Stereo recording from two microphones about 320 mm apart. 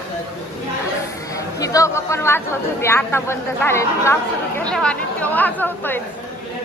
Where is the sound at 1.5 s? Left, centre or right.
Centre.